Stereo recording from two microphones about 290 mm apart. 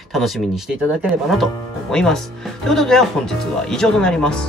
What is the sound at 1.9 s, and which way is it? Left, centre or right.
Speech, centre.